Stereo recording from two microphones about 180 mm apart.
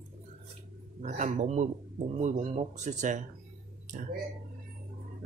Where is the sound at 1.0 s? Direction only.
40° right (ahead or behind).